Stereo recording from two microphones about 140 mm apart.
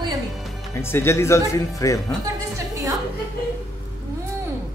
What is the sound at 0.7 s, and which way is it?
Speech, 15° left (ahead or behind).